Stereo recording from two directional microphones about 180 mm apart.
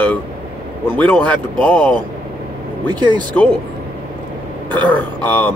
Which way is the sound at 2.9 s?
25° right (ahead or behind).